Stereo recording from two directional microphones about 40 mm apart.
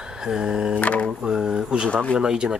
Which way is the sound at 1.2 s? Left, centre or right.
Centre.